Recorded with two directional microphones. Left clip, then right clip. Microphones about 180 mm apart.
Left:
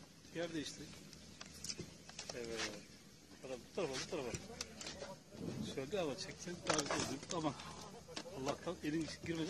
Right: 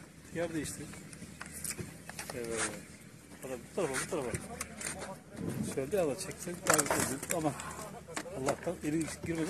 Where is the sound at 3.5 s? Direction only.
Centre (ahead or behind).